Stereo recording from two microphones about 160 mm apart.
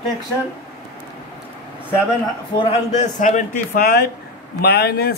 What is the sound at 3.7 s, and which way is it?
Speech, 75° left (ahead or behind).